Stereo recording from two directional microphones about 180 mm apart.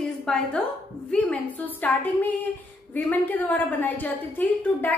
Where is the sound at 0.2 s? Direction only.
5° left (ahead or behind).